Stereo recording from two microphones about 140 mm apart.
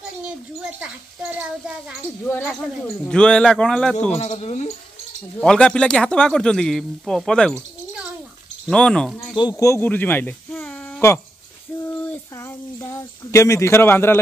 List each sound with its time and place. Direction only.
0.2 s speech: 10° right (ahead or behind)
3.1 s speech: 5° left (ahead or behind)
4.1 s speech: 55° left (ahead or behind)
5.4 s speech: 5° left (ahead or behind)
8.6 s speech: 5° left (ahead or behind)
9.3 s speech: 30° left (ahead or behind); by 10.8 s 10° left (ahead or behind)
11.9 s speech: 15° left (ahead or behind)